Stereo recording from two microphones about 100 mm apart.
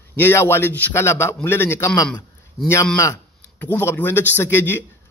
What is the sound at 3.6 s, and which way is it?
A man's voice, 20° left (ahead or behind).